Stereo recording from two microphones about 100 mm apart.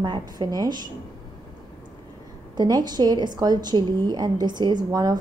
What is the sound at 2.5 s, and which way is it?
A woman's voice, 45° right (ahead or behind).